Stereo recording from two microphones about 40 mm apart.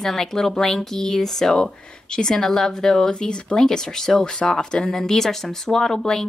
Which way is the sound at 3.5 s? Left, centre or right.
Centre.